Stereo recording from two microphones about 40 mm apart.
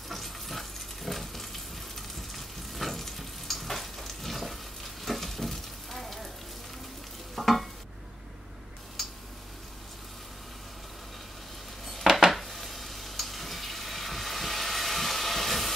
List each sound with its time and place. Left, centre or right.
0.1 s frying: centre
7.3 s stir: centre
11.8 s dishes: centre